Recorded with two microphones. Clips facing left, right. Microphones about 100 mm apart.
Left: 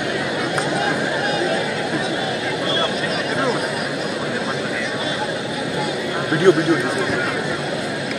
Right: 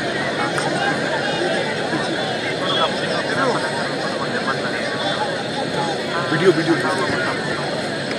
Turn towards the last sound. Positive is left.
turn(degrees=30)  # may be behind; listen again after turning